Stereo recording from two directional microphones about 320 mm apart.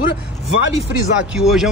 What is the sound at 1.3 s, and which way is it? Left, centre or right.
Speech, centre.